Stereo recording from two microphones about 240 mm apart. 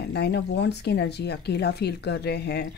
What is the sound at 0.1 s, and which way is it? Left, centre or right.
Speech, left.